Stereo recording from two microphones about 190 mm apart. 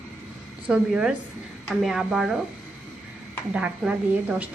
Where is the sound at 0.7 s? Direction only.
5° right (ahead or behind).